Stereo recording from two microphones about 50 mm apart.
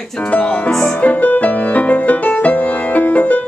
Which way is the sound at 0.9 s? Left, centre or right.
Left.